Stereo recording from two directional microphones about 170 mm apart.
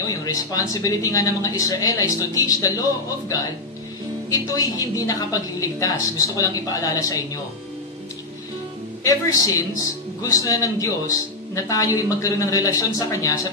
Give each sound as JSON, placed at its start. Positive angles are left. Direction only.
{"t": 0.1, "sound": "a man's voice", "side_deg": 20}
{"t": 9.0, "sound": "a man's voice", "side_deg": 20}